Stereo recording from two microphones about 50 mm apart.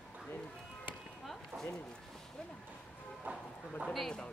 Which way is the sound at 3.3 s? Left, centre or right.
Right.